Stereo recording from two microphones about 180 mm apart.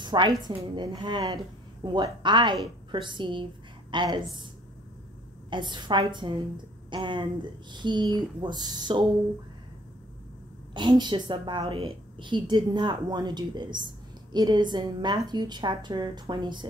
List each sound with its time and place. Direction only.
0.0 s a woman's voice: 25° right (ahead or behind)
5.5 s speech: 25° right (ahead or behind)
10.7 s speech: 25° right (ahead or behind)